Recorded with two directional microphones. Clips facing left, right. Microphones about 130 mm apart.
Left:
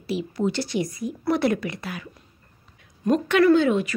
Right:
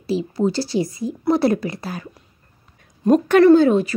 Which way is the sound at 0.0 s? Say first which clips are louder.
Right 5 dB; 30° right (ahead or behind).